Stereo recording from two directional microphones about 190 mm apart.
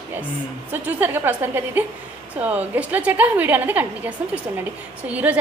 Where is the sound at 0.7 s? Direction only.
10° right (ahead or behind).